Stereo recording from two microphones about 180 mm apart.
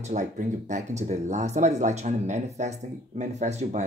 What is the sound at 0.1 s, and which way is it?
Speech, 40° right (ahead or behind).